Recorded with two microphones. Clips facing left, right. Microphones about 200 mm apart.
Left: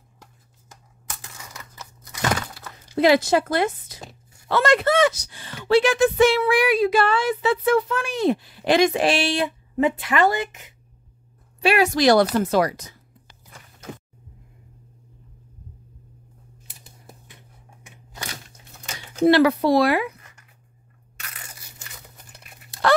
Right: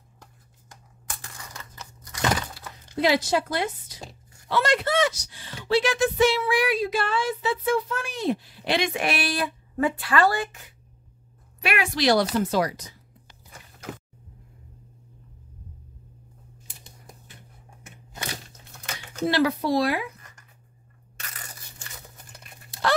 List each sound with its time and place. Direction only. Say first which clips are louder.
3.0 s speech: left 5 dB; 50° left (ahead or behind)
6.4 s speech: left 5 dB; 70° left (ahead or behind)
8.6 s a woman's voice: left 7 dB; 40° left (ahead or behind); by 10.7 s 20° left (ahead or behind)
11.6 s speech: left 6 dB; 35° left (ahead or behind); by 12.7 s 55° left (ahead or behind)
19.2 s speech: left 7 dB; 65° left (ahead or behind)
22.7 s a sound: left 5 dB; 55° left (ahead or behind)